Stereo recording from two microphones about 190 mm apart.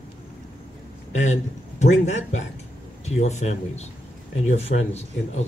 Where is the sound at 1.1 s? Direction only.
40° left (ahead or behind).